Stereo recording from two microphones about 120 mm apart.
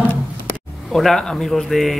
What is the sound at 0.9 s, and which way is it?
Speech, 5° left (ahead or behind).